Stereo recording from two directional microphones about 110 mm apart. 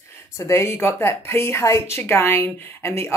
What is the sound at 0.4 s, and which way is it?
A woman's voice, 25° left (ahead or behind).